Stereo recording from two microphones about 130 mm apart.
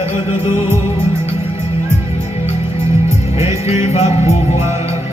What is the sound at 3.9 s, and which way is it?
Music, 55° left (ahead or behind).